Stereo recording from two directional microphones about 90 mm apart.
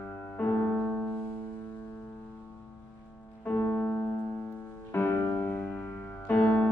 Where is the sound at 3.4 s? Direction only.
20° left (ahead or behind).